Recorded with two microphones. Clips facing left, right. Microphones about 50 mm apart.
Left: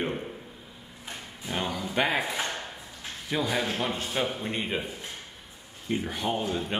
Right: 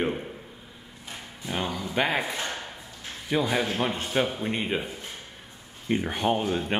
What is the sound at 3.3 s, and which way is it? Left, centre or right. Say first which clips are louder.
A man's voice: right 3 dB; centre.